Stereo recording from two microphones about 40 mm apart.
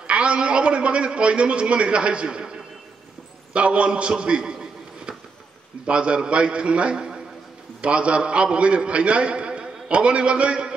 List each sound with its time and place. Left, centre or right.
0.0 s a man's voice: right
5.9 s a man's voice: right